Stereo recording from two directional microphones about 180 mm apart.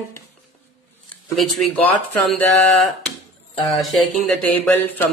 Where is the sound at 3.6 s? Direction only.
Centre (ahead or behind).